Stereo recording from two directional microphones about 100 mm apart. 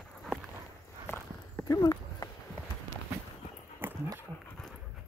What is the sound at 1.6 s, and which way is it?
Clip-clop, 35° left (ahead or behind).